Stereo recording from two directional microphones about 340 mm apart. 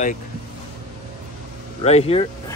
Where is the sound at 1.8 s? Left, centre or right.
Centre.